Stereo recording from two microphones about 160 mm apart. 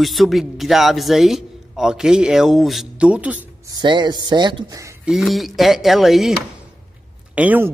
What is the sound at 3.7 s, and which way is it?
A man's voice, 25° right (ahead or behind).